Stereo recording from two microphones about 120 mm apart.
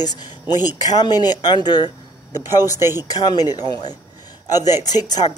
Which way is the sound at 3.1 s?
35° left (ahead or behind).